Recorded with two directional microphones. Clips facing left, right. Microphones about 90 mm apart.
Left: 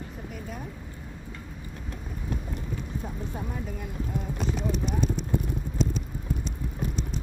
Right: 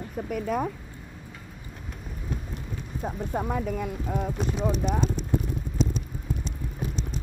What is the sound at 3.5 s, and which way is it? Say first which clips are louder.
Speech: right 6 dB; 90° right.